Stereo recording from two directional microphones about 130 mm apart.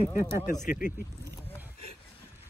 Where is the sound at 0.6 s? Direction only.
90° left.